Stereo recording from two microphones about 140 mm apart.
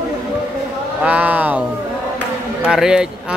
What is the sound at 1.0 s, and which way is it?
Speech, 10° right (ahead or behind).